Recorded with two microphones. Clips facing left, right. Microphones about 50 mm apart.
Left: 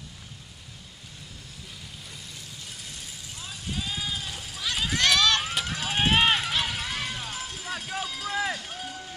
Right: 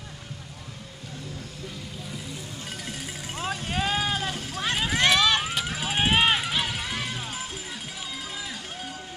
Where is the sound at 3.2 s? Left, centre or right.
Right.